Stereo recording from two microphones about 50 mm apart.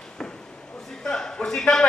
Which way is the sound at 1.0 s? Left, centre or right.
Centre.